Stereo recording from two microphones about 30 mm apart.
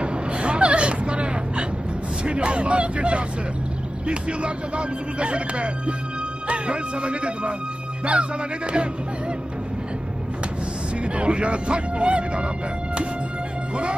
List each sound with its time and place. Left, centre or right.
0.0 s a sound: right
2.2 s speech: right
11.1 s speech: right